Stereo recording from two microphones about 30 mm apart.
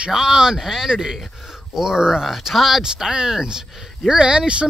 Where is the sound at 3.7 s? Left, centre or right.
Centre.